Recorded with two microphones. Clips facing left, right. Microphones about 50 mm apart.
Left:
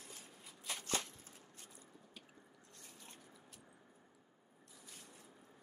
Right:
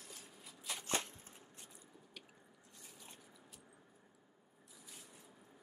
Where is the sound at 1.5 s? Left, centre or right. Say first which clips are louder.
Even; centre.